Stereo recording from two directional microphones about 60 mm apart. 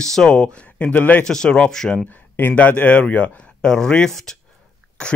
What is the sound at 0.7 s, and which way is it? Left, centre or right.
Speech, left.